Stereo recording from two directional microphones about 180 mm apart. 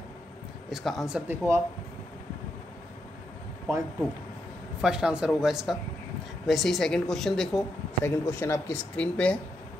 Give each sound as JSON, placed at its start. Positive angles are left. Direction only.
{"t": 0.7, "sound": "a woman's voice", "side_deg": 0}
{"t": 4.8, "sound": "a woman's voice", "side_deg": -5}
{"t": 8.0, "sound": "speech", "side_deg": 15}